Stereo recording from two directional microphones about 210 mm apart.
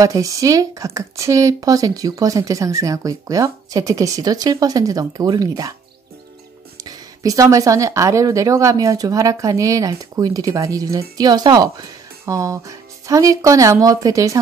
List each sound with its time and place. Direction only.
0.0 s speech: 15° right (ahead or behind)
6.8 s speech: 15° right (ahead or behind)